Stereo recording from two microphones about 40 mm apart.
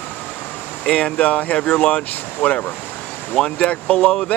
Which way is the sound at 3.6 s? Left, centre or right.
Left.